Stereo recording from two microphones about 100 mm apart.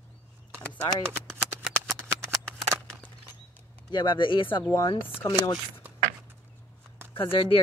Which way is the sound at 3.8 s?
50° left (ahead or behind).